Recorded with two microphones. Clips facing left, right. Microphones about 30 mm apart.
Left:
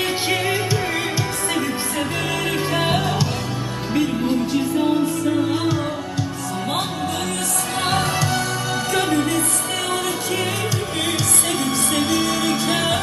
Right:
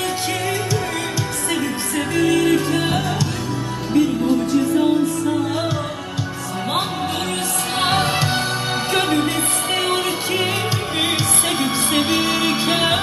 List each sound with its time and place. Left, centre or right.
2.1 s music: centre
4.7 s music: centre
7.8 s music: right
11.0 s music: right